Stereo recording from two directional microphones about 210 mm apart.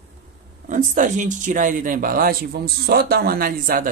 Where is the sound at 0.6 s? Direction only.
35° right (ahead or behind).